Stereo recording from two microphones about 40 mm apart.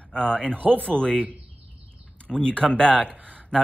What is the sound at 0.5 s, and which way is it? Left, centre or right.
Speech, right.